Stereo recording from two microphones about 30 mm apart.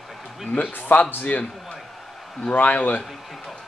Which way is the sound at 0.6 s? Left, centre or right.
Left.